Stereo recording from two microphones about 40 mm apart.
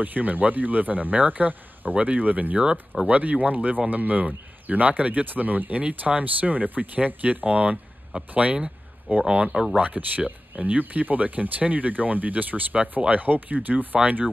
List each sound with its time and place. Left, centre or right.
0.0 s speech: right
9.3 s speech: right
9.8 s speech: right